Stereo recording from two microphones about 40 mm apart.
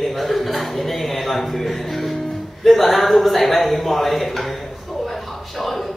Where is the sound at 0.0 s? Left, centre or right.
Centre.